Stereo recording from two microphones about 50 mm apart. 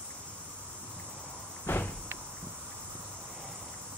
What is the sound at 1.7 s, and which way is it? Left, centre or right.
Door, left.